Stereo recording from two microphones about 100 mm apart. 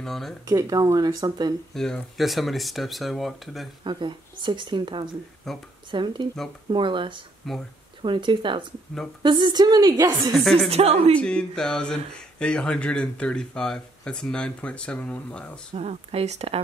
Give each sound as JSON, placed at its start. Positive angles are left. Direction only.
{"t": 0.0, "sound": "speech", "side_deg": 5}
{"t": 0.5, "sound": "speech", "side_deg": -40}
{"t": 1.7, "sound": "speech", "side_deg": 5}
{"t": 3.8, "sound": "speech", "side_deg": -50}
{"t": 5.5, "sound": "speech", "side_deg": 5}
{"t": 5.9, "sound": "speech", "side_deg": -55}
{"t": 10.3, "sound": "speech", "side_deg": 5}
{"t": 10.7, "sound": "speech", "side_deg": -90}
{"t": 11.1, "sound": "speech", "side_deg": 10}
{"t": 15.7, "sound": "speech", "side_deg": -90}